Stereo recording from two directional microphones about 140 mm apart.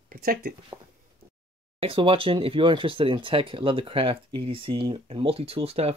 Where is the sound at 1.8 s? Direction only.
40° right (ahead or behind).